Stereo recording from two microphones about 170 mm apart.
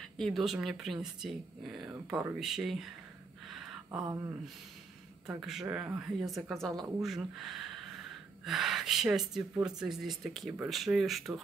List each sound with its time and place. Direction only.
0.2 s speech: centre (ahead or behind)
3.4 s a sound: centre (ahead or behind)
4.0 s speech: 20° right (ahead or behind)
5.4 s speech: 5° right (ahead or behind)